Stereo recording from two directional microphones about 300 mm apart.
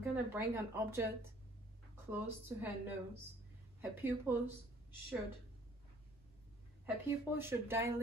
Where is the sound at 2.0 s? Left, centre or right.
Centre.